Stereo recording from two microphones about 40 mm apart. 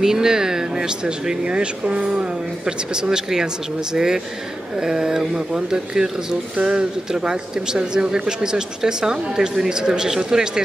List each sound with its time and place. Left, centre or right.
0.0 s speech: centre